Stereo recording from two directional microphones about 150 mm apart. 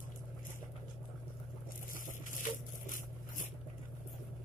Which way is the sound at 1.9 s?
60° left (ahead or behind).